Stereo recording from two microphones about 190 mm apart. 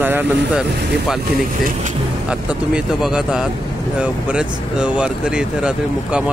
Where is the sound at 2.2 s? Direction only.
5° right (ahead or behind).